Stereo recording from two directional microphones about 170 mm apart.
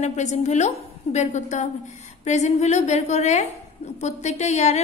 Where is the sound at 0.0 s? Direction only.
45° left (ahead or behind).